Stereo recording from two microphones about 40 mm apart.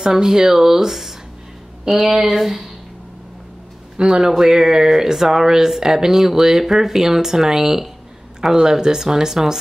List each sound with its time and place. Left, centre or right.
0.0 s speech: centre
3.9 s speech: right
4.3 s speech: centre